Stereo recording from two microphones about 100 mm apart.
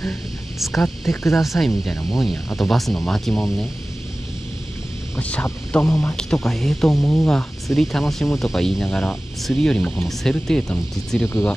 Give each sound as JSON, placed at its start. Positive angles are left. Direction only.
{"t": 0.0, "sound": "speech", "side_deg": 0}
{"t": 5.2, "sound": "speech", "side_deg": 15}
{"t": 6.1, "sound": "speech", "side_deg": 5}